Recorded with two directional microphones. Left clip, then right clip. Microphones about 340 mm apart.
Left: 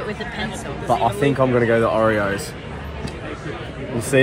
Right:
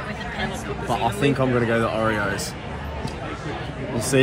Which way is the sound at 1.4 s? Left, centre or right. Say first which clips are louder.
Left 7 dB; centre.